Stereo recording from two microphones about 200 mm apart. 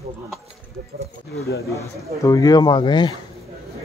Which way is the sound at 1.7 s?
15° left (ahead or behind).